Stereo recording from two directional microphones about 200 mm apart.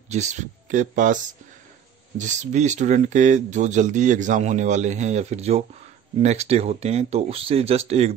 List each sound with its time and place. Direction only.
0.1 s speech: 35° right (ahead or behind)